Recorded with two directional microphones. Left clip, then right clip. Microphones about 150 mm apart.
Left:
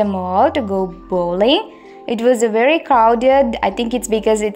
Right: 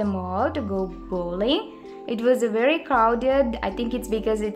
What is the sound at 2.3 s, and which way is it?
A woman's voice, 25° left (ahead or behind).